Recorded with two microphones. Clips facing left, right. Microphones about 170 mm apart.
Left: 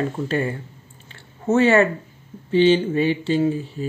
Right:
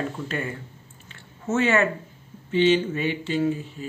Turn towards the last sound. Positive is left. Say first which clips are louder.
# left 4 dB
turn(degrees=30)  # may be behind; listen again after turning